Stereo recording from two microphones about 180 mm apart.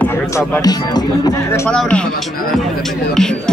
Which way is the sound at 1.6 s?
5° left (ahead or behind).